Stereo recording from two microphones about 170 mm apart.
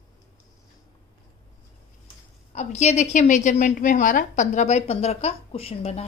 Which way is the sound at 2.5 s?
40° left (ahead or behind).